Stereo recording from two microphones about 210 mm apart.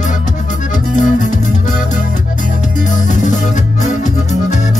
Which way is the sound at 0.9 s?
35° left (ahead or behind).